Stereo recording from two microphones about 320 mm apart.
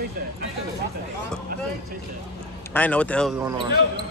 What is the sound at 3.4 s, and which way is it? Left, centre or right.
Speech, centre.